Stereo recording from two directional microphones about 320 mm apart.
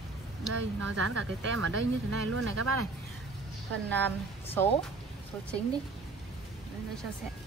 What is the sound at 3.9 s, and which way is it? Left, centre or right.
Speech, centre.